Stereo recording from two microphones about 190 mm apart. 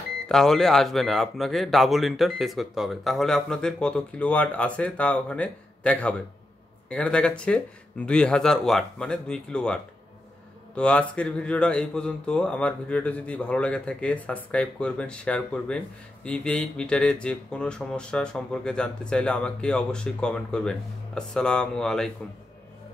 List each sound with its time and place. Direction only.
0.3 s speech: centre (ahead or behind)
10.8 s speech: 5° left (ahead or behind)